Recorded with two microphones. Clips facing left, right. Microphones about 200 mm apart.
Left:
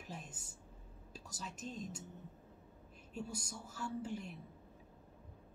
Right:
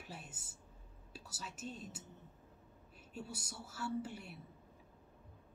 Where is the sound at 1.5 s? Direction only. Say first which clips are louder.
Left 2 dB; 40° left (ahead or behind).